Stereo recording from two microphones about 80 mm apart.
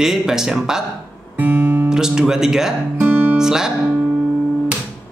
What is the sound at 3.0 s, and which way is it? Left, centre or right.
Guitar, right.